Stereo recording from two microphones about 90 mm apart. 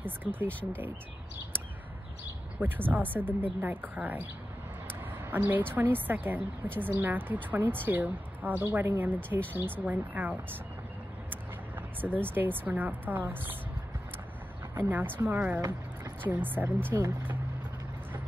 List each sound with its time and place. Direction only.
0.0 s speech: 20° right (ahead or behind)
2.6 s a woman's voice: 20° right (ahead or behind)
11.2 s vehicle: 20° right (ahead or behind)
12.3 s a woman's voice: 20° right (ahead or behind)
14.8 s a woman's voice: 20° right (ahead or behind)